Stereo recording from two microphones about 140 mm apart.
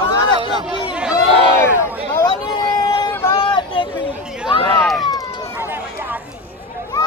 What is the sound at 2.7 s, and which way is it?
Vehicle, 30° left (ahead or behind).